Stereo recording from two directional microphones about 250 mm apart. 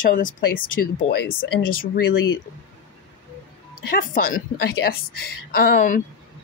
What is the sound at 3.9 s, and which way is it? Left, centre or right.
A woman's voice, left.